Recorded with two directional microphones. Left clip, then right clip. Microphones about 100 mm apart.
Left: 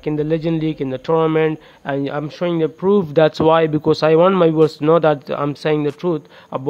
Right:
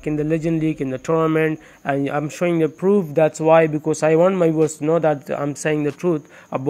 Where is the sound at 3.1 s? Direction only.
45° left (ahead or behind).